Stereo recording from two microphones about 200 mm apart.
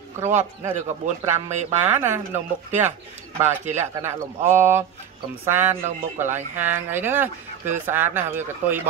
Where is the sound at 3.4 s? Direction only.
35° right (ahead or behind).